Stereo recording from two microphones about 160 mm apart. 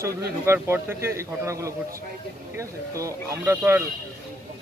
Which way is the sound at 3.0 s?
20° right (ahead or behind).